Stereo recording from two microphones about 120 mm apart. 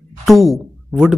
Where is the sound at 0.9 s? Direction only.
10° right (ahead or behind).